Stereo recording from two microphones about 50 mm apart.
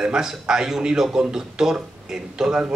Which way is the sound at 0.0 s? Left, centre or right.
Centre.